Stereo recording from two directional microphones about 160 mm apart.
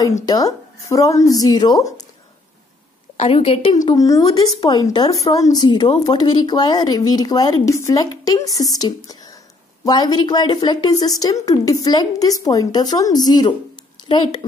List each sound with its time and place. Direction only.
0.0 s speech: 25° left (ahead or behind)
3.2 s a woman's voice: 40° left (ahead or behind)
3.7 s speech: 20° left (ahead or behind)